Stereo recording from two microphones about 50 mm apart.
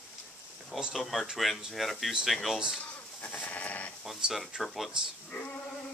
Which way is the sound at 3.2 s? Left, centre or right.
Left.